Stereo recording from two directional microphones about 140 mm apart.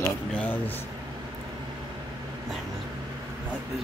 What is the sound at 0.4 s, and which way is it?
Speech, 15° left (ahead or behind).